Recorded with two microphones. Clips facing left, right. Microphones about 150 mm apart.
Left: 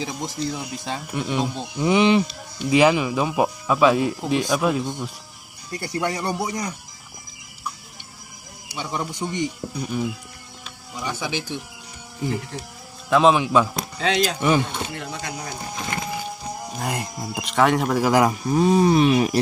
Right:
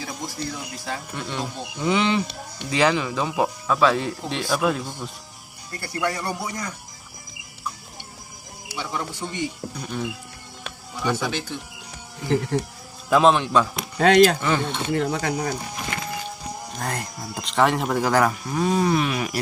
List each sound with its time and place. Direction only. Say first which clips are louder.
0.0 s speech: left 4 dB; 20° left (ahead or behind)
5.7 s speech: left 1 dB; 20° left (ahead or behind)
8.7 s speech: left 2 dB; 15° left (ahead or behind)
11.1 s speech: right 1 dB; 10° left (ahead or behind)
12.3 s speech: right 7 dB; 70° right (ahead or behind)
13.1 s speech: left 1 dB; centre (ahead or behind)
13.9 s speech: right 8 dB; 55° right (ahead or behind)
14.4 s speech: left 3 dB; 15° left (ahead or behind)
15.0 s speech: right 8 dB; 55° right (ahead or behind)
16.7 s speech: left 2 dB; 10° left (ahead or behind)
17.4 s speech: left 2 dB; centre (ahead or behind)
18.1 s speech: left 3 dB; 20° left (ahead or behind)